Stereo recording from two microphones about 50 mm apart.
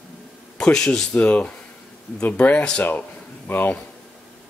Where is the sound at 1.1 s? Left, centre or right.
Left.